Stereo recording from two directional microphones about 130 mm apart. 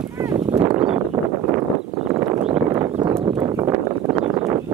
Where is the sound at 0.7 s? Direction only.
35° right (ahead or behind).